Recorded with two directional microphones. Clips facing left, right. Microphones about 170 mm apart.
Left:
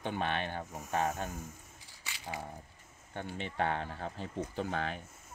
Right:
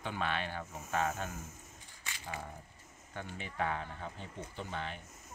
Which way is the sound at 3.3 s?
25° left (ahead or behind).